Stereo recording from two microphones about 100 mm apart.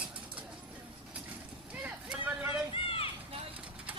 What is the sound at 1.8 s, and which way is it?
Vehicle, 20° right (ahead or behind).